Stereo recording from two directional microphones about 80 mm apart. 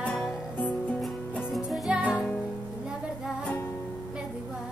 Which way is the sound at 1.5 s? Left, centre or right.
Centre.